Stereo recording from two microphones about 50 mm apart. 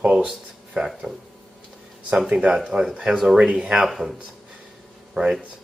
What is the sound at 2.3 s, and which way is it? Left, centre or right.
Speech, right.